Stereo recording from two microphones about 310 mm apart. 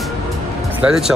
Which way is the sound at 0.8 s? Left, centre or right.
Centre.